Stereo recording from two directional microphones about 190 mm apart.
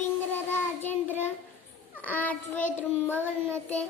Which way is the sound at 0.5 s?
10° left (ahead or behind).